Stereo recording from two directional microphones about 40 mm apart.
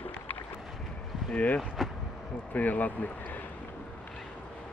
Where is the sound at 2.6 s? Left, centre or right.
Left.